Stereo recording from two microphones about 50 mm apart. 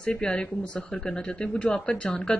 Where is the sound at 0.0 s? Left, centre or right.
Centre.